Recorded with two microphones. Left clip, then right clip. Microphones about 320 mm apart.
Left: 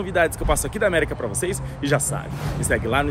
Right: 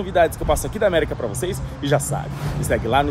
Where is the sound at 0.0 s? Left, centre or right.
Centre.